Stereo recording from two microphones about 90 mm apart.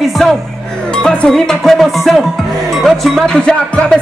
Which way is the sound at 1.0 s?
5° left (ahead or behind).